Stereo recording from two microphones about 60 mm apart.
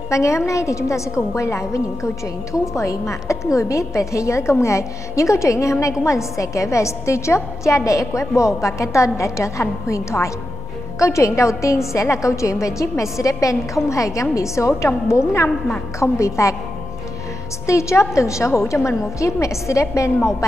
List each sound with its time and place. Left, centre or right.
0.1 s a woman's voice: left
17.6 s a woman's voice: left